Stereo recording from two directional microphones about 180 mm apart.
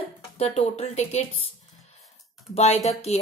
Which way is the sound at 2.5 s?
35° left (ahead or behind).